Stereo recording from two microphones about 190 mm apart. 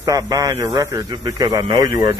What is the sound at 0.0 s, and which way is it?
A man's voice, 20° right (ahead or behind).